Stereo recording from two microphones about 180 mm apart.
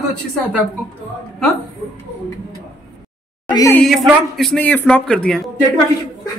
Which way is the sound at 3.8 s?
Centre (ahead or behind).